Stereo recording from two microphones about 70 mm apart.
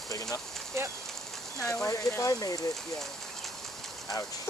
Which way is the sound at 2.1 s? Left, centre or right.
Left.